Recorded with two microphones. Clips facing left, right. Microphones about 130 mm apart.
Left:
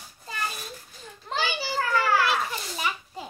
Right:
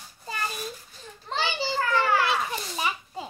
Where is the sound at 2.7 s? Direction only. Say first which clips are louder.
Right 1 dB; 25° right (ahead or behind).